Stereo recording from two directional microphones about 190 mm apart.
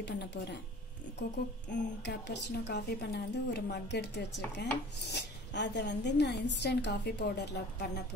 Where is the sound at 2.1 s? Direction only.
65° left (ahead or behind).